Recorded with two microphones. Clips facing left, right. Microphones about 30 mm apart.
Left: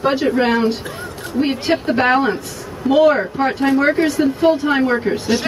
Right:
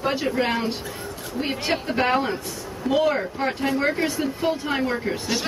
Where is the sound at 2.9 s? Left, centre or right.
Left.